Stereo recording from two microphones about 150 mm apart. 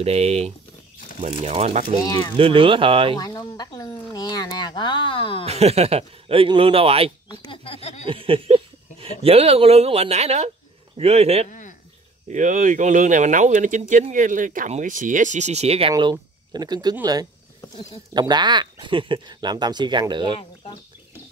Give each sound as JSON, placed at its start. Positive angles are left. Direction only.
{"t": 0.0, "sound": "speech", "side_deg": -45}
{"t": 2.0, "sound": "speech", "side_deg": 15}
{"t": 2.3, "sound": "speech", "side_deg": -35}
{"t": 3.2, "sound": "speech", "side_deg": 25}
{"t": 5.5, "sound": "speech", "side_deg": -45}
{"t": 7.2, "sound": "a sound", "side_deg": 35}
{"t": 8.1, "sound": "a sound", "side_deg": -35}
{"t": 9.2, "sound": "speech", "side_deg": -40}
{"t": 12.3, "sound": "speech", "side_deg": -55}
{"t": 15.9, "sound": "speech", "side_deg": -30}
{"t": 20.3, "sound": "speech", "side_deg": 40}